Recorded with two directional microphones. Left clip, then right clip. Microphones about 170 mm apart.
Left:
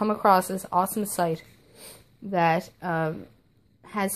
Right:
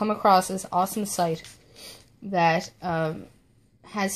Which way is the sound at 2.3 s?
Centre (ahead or behind).